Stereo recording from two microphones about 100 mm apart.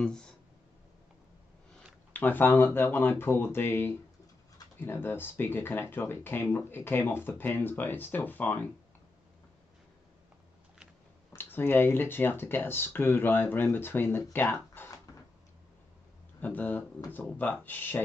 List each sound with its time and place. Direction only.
0.0 s speech: 10° left (ahead or behind)
2.1 s speech: 20° left (ahead or behind)
11.3 s speech: 20° left (ahead or behind)
16.3 s speech: 15° left (ahead or behind)